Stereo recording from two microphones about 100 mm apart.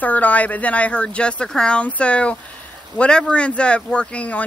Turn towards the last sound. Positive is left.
turn(degrees=10)  # may be behind; listen again after turning